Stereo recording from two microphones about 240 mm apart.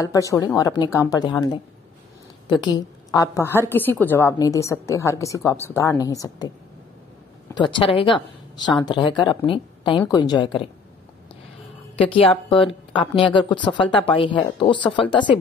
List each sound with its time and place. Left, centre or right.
0.0 s a woman's voice: centre
2.4 s a woman's voice: centre
7.5 s speech: centre
12.0 s speech: left